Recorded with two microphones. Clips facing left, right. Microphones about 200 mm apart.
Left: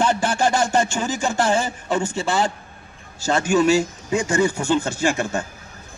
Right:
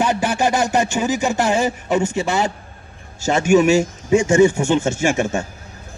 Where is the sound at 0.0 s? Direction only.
15° right (ahead or behind).